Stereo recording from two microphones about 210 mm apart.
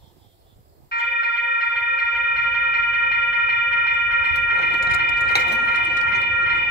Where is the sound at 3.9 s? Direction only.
50° left (ahead or behind).